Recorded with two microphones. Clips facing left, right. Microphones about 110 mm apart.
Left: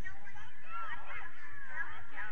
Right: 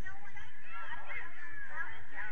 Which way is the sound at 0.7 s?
40° left (ahead or behind).